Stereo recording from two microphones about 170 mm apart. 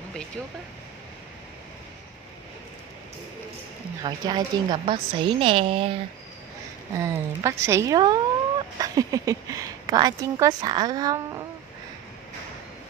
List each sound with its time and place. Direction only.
4.0 s a woman's voice: 25° right (ahead or behind)
7.0 s a woman's voice: 15° right (ahead or behind)